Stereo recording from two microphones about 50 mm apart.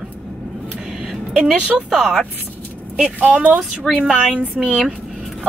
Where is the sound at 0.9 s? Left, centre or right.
Centre.